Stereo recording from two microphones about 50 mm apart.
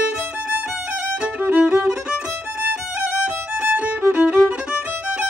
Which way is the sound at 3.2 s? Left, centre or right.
Right.